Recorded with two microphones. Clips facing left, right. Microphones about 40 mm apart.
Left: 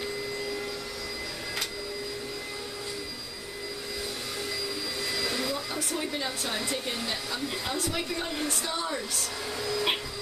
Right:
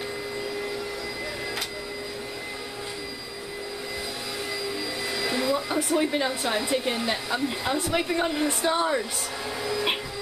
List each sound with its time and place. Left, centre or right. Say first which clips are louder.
5.1 s speech: right 6 dB; centre
8.3 s vacuum cleaner: right 6 dB; centre
8.6 s speech: right 8 dB; right
9.6 s vacuum cleaner: right 2 dB; centre